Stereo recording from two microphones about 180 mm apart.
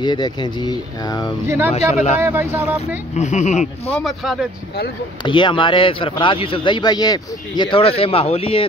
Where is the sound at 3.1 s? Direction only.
40° left (ahead or behind).